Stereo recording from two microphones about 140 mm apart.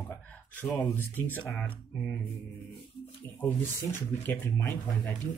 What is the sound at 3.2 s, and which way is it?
Speech, 15° left (ahead or behind).